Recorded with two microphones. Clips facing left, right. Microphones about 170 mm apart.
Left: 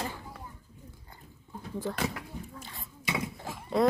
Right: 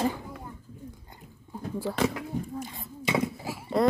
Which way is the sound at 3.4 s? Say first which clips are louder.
Right 2 dB; 5° right (ahead or behind).